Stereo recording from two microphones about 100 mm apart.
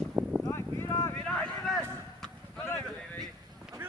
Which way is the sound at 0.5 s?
25° left (ahead or behind).